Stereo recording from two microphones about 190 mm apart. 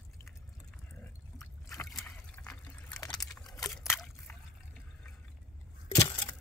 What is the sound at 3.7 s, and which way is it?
Trickle, 5° left (ahead or behind).